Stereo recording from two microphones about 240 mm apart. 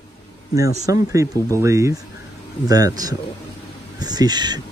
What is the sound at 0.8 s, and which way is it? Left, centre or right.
Speech, centre.